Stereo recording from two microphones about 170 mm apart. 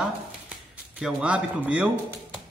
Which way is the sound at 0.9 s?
5° right (ahead or behind).